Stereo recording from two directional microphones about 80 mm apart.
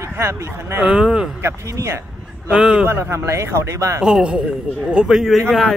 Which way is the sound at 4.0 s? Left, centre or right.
Centre.